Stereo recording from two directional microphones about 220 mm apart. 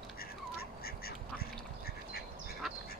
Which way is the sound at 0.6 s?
45° left (ahead or behind).